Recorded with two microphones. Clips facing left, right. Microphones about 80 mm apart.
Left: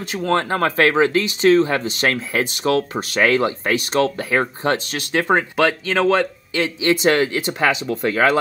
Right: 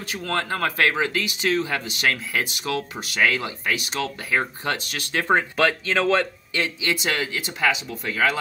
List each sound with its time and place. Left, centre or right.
0.0 s speech: left
5.6 s speech: centre
6.8 s speech: left